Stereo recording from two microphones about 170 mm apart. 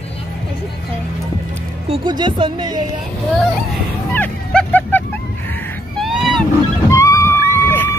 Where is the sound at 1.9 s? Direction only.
25° right (ahead or behind).